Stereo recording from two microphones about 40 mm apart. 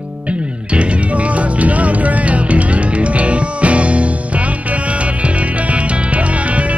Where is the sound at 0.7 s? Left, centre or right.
Right.